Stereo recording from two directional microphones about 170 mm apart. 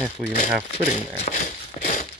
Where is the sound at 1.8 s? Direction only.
45° left (ahead or behind).